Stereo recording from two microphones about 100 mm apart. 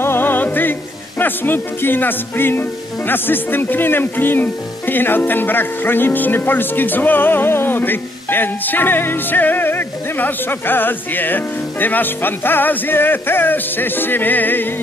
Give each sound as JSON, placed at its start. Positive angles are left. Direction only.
{"t": 0.0, "sound": "music", "side_deg": 20}
{"t": 1.2, "sound": "speech", "side_deg": 20}